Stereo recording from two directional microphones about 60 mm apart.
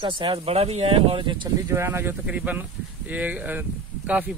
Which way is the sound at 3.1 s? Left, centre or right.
Right.